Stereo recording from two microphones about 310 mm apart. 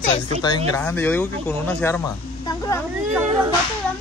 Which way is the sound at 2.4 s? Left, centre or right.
Centre.